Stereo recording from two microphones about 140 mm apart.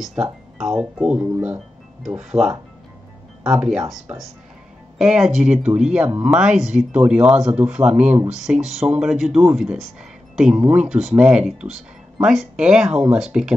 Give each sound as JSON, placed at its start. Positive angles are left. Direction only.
{"t": 0.0, "sound": "speech", "side_deg": -5}